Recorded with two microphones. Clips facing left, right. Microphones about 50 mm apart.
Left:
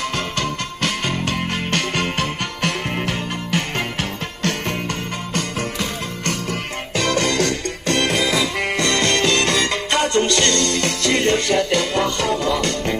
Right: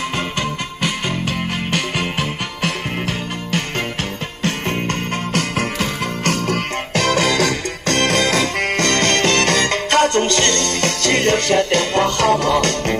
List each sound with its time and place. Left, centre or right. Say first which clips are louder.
0.4 s music: right 1 dB; centre
4.4 s music: right 2 dB; centre
5.3 s music: right 3 dB; right
7.8 s music: right 2 dB; right
8.9 s music: right 1 dB; right
12.3 s music: right 4 dB; right